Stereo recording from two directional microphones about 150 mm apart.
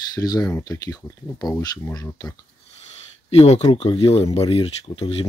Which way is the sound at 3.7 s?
40° left (ahead or behind).